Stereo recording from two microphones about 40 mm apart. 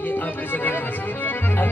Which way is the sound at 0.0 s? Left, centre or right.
Left.